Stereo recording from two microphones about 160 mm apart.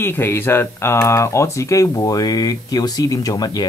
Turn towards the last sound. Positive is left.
turn(degrees=25)  # may be behind; listen again after turning